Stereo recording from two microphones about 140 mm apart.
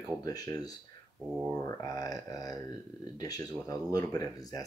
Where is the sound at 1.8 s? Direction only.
25° left (ahead or behind).